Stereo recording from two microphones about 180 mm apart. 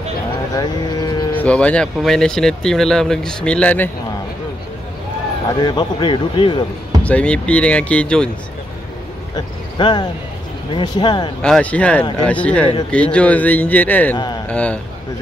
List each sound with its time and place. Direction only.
0.6 s speech: 20° left (ahead or behind)
1.3 s speech: 10° left (ahead or behind)
5.6 s speech: 25° left (ahead or behind)
7.0 s speech: 5° left (ahead or behind)
9.3 s speech: 25° left (ahead or behind)
11.4 s speech: 5° left (ahead or behind)
14.1 s speech: 25° left (ahead or behind)
14.5 s speech: 5° left (ahead or behind)